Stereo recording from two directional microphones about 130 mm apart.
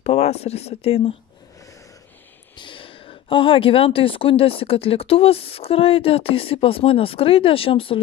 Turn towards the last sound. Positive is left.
turn(degrees=45)  # may be behind; listen again after turning